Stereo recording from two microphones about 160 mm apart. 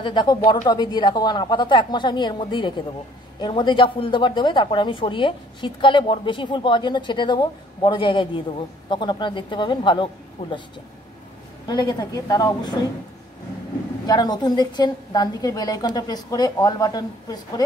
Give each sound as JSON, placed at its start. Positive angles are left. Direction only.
{"t": 0.0, "sound": "a woman's voice", "side_deg": 30}
{"t": 11.6, "sound": "a woman's voice", "side_deg": 25}
{"t": 14.0, "sound": "a woman's voice", "side_deg": 25}